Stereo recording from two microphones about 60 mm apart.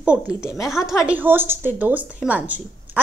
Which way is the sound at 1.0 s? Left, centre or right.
Right.